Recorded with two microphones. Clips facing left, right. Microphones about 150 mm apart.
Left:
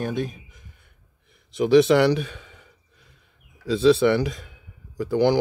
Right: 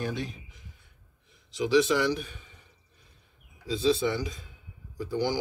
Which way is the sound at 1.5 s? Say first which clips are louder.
Left 7 dB; 60° left (ahead or behind).